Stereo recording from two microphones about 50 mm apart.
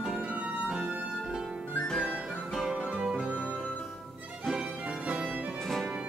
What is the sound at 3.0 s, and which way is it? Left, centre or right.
Music, centre.